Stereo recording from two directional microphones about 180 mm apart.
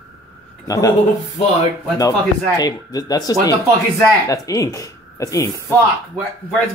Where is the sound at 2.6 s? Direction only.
20° left (ahead or behind).